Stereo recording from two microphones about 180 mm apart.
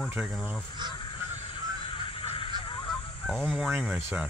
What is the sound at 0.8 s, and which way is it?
Honk, 25° right (ahead or behind).